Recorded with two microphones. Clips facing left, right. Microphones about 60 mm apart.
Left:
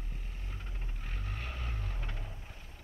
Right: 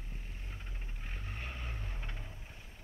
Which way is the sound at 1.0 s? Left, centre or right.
Centre.